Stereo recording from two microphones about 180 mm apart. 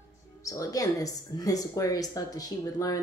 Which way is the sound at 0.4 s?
20° left (ahead or behind).